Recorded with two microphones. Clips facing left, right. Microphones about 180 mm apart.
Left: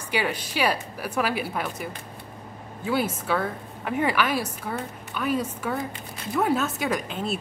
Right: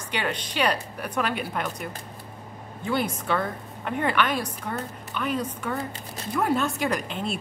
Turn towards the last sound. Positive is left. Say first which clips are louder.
# left 1 dB
turn(degrees=0)  # may be behind; listen again after turning